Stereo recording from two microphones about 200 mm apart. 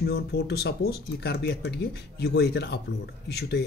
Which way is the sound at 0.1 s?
55° left (ahead or behind).